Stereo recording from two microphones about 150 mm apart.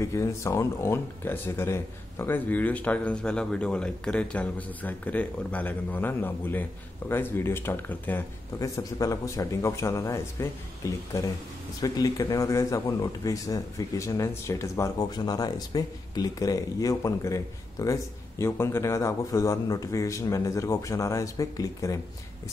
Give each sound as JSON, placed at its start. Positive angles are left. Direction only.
{"t": 0.0, "sound": "speech", "side_deg": 20}